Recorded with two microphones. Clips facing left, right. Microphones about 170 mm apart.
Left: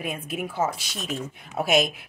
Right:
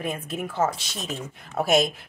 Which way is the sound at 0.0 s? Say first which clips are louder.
Right 1 dB; 10° left (ahead or behind).